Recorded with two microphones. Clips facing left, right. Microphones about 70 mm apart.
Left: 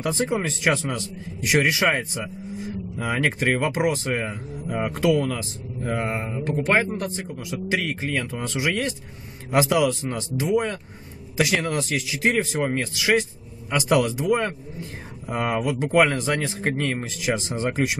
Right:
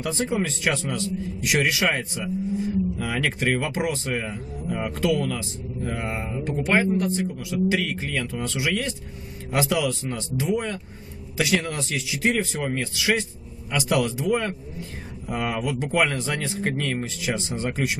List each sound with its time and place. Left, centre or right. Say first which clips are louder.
0.0 s speech: left 1 dB; centre
16.6 s speech: left 1 dB; left
17.3 s speech: left 4 dB; centre